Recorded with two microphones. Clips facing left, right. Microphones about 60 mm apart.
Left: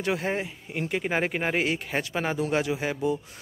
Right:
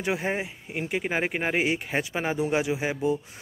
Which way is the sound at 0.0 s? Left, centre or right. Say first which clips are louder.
Even; centre.